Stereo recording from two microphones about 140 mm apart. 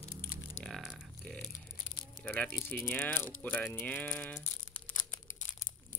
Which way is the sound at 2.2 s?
10° left (ahead or behind).